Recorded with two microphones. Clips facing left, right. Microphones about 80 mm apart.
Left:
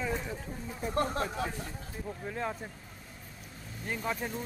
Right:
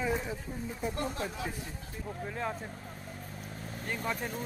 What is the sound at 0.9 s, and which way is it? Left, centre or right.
Speech, left.